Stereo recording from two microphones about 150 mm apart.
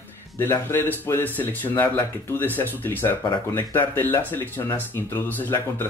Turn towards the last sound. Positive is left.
turn(degrees=15)  # may be behind; listen again after turning